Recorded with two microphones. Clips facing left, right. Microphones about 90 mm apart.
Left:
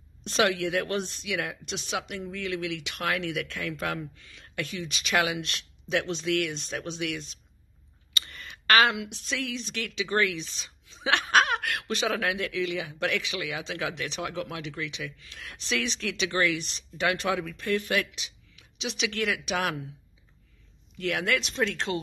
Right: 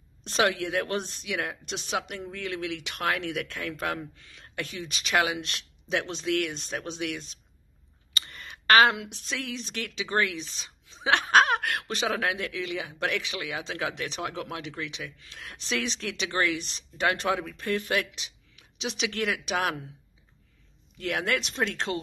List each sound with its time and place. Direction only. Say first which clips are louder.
0.2 s a woman's voice: even; 35° right (ahead or behind)
8.3 s a woman's voice: right 2 dB; 30° right (ahead or behind)
21.0 s a woman's voice: left 1 dB; 30° right (ahead or behind)